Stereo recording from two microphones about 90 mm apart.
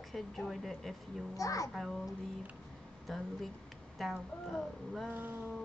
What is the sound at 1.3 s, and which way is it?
Speech, 40° left (ahead or behind).